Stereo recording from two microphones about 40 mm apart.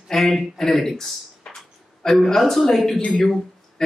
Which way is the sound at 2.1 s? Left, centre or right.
Centre.